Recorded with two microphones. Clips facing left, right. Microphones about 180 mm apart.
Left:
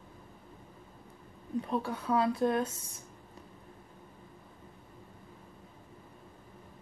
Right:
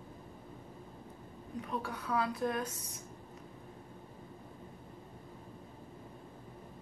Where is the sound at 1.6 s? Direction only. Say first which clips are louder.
Left 4 dB; 30° left (ahead or behind).